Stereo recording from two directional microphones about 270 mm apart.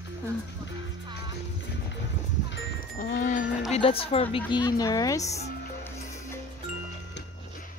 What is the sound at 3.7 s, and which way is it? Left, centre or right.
A woman's voice, left.